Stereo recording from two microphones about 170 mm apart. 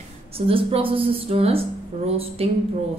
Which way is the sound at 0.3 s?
35° right (ahead or behind).